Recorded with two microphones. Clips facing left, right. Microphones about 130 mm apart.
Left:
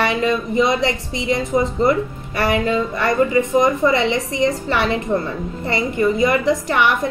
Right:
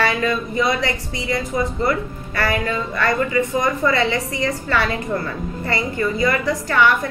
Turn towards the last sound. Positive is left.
turn(degrees=20)  # may be behind; listen again after turning